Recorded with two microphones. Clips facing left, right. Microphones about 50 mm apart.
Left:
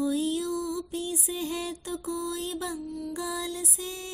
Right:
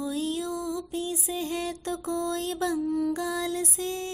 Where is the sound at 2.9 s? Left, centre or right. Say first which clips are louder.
Right 8 dB; right.